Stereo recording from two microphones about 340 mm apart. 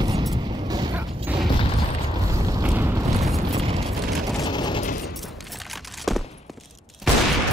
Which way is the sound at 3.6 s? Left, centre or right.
Centre.